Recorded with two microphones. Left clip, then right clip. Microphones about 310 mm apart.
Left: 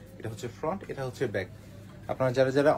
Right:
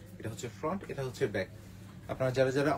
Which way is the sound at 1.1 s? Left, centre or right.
Centre.